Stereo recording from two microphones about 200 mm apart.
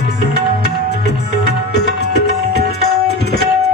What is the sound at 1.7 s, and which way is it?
Music, 55° left (ahead or behind).